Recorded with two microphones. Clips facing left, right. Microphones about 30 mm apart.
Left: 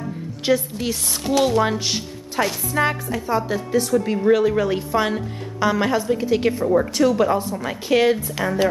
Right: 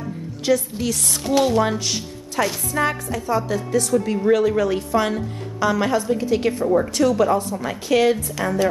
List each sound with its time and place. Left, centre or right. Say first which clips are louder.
0.5 s a woman's voice: even; centre
1.4 s a woman's voice: left 1 dB; centre
1.8 s a woman's voice: left 1 dB; centre